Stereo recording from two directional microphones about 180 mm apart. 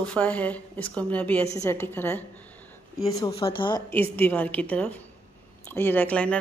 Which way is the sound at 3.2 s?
30° left (ahead or behind).